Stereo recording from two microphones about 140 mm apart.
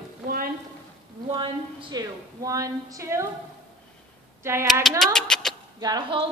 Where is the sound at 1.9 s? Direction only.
25° right (ahead or behind).